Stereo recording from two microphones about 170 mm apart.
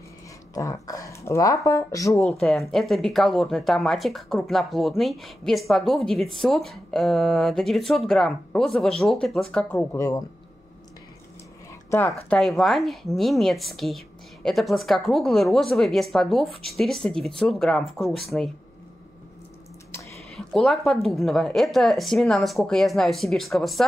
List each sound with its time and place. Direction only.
0.6 s speech: 20° left (ahead or behind)
2.1 s speech: 5° left (ahead or behind)
12.3 s speech: centre (ahead or behind)
20.2 s speech: centre (ahead or behind)